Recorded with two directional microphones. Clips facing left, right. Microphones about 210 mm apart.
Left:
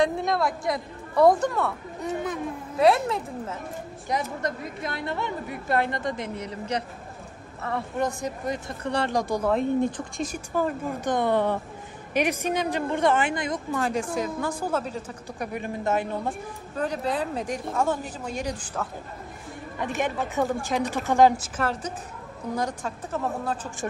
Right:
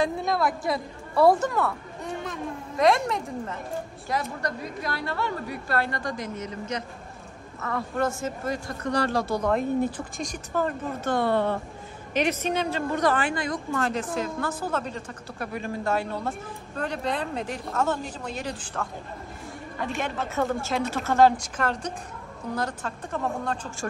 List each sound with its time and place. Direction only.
0.0 s speech: centre (ahead or behind)
4.1 s a woman's voice: 20° left (ahead or behind)
8.0 s a woman's voice: 15° left (ahead or behind)
9.1 s a woman's voice: 15° left (ahead or behind)
9.5 s speech: 5° right (ahead or behind)
10.2 s a woman's voice: 5° left (ahead or behind)
20.0 s a woman's voice: 15° left (ahead or behind)